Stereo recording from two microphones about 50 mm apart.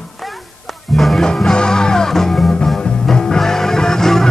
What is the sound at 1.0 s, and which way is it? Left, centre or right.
Music, centre.